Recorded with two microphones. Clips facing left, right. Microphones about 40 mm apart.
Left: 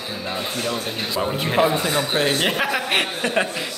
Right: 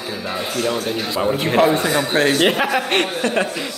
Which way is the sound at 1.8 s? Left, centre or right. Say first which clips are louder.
Right 4 dB; right.